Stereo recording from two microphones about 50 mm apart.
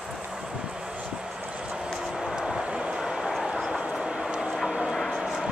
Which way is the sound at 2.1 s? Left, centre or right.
Centre.